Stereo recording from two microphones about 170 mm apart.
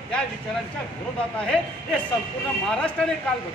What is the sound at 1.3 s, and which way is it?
Speech, 5° left (ahead or behind).